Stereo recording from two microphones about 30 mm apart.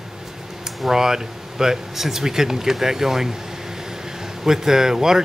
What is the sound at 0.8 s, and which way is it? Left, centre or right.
Speech, centre.